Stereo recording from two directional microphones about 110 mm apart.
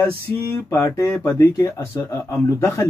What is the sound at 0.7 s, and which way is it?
Speech, 20° left (ahead or behind).